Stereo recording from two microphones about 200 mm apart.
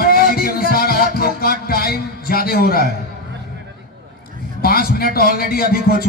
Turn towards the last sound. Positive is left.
turn(degrees=50)  # may be behind; listen again after turning